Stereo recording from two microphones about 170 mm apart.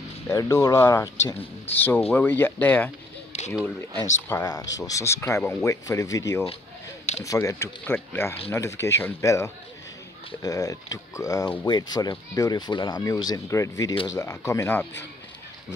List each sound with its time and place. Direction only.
0.3 s speech: 15° left (ahead or behind)
3.3 s a sound: 40° left (ahead or behind)
4.0 s speech: 20° left (ahead or behind)
7.2 s speech: 15° left (ahead or behind)